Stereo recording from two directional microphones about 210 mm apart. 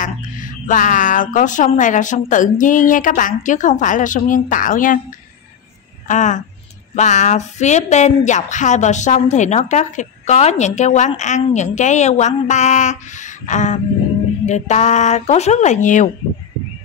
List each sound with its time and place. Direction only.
0.0 s speech: 40° left (ahead or behind)
6.0 s speech: 35° left (ahead or behind)